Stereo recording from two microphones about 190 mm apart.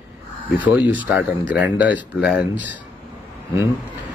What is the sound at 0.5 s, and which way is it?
Speech, 10° right (ahead or behind).